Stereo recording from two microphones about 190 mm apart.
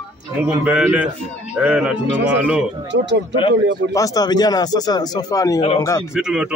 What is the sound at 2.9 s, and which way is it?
Speech, 65° right (ahead or behind).